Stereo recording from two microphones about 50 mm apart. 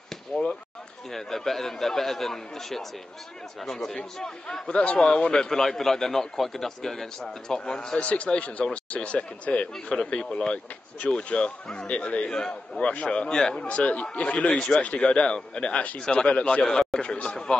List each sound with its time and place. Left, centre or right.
0.3 s basketball bounce: centre
1.1 s a man's voice: centre
8.0 s a man's voice: left
12.3 s a man's voice: centre
13.6 s a man's voice: left
16.6 s a man's voice: centre